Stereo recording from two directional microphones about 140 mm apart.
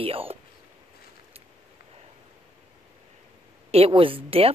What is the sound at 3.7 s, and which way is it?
Speech, 40° right (ahead or behind).